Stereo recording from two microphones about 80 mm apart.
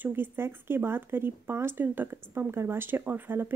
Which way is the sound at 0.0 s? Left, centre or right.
Right.